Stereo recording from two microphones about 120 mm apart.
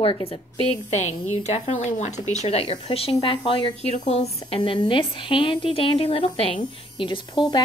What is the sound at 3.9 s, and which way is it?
Speech, 60° left (ahead or behind).